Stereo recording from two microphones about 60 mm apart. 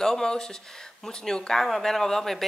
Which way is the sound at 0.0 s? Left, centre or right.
Centre.